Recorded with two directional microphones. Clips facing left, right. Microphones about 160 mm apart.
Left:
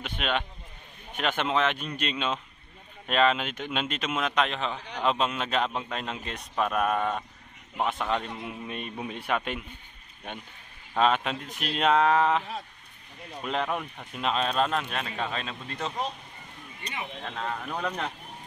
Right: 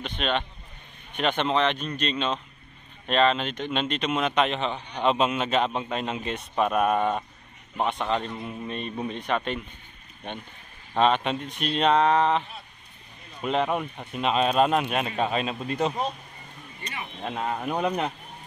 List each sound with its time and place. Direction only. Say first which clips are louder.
0.0 s a man's voice: right 2 dB; 5° left (ahead or behind); by 15.9 s 20° right (ahead or behind)
17.2 s speech: right 7 dB; 15° right (ahead or behind)